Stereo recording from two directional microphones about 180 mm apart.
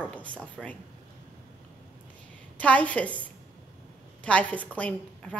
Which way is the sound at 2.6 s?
5° left (ahead or behind).